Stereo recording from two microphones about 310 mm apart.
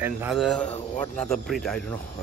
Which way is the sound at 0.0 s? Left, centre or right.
Centre.